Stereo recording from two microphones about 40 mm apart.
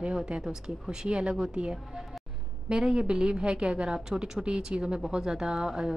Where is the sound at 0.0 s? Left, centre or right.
Right.